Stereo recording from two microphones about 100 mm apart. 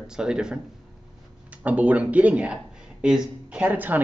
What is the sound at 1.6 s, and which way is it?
Speech, 15° right (ahead or behind).